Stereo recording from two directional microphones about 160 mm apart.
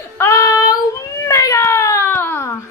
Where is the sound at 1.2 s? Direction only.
20° left (ahead or behind).